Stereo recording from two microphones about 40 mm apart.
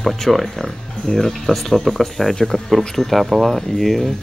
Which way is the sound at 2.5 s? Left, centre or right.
Centre.